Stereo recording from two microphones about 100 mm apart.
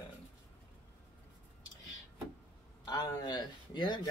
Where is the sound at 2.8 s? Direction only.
45° left (ahead or behind).